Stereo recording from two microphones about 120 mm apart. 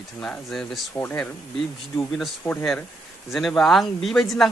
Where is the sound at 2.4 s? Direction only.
25° left (ahead or behind).